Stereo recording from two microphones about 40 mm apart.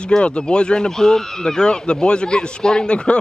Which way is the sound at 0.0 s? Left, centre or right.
Left.